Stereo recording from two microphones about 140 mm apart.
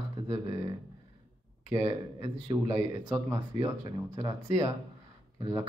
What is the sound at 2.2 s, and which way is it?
Speech, 25° right (ahead or behind).